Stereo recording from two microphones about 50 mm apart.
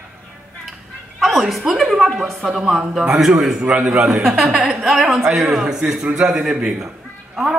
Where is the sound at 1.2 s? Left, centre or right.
Centre.